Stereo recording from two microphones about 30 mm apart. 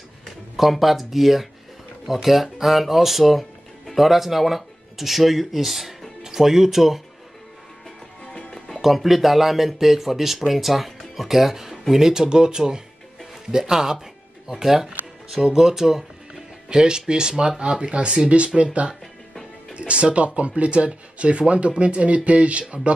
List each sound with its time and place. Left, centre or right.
0.6 s speech: centre
8.8 s speech: centre
12.1 s speech: right
16.6 s speech: right